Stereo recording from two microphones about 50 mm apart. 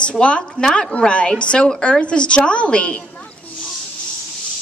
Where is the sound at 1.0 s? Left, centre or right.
Left.